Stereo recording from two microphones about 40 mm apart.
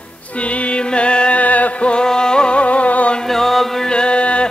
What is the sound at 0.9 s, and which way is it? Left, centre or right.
Music, left.